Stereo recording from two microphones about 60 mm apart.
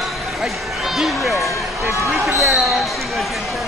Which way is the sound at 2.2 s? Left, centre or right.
Right.